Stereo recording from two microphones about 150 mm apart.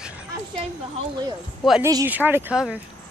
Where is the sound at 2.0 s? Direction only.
10° right (ahead or behind).